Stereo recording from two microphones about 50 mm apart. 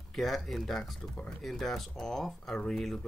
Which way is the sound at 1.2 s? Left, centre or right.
Centre.